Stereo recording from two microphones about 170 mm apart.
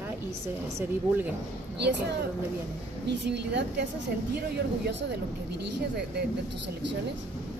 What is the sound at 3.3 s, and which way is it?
Speech, 90° right.